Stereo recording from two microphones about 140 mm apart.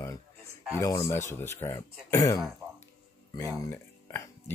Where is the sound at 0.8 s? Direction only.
20° left (ahead or behind).